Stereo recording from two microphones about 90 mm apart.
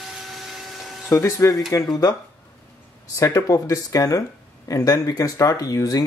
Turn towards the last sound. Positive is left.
turn(degrees=40)  # may be behind; listen again after turning